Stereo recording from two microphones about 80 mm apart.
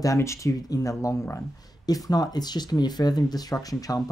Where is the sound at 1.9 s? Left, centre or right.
Left.